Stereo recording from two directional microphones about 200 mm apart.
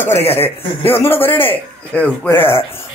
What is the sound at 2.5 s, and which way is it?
Speech, 30° left (ahead or behind).